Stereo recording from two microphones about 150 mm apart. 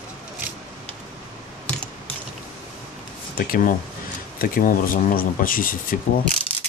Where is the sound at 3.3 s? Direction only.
70° left (ahead or behind).